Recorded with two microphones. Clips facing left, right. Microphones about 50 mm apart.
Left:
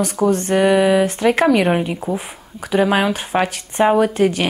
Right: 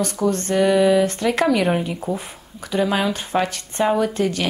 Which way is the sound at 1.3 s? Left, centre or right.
Centre.